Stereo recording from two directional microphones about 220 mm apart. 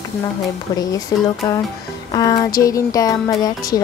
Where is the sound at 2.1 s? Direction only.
15° left (ahead or behind).